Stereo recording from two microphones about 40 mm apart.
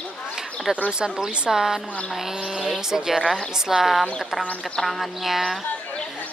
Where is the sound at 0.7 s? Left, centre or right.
Centre.